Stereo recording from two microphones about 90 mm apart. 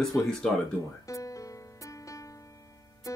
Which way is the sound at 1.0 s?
35° left (ahead or behind).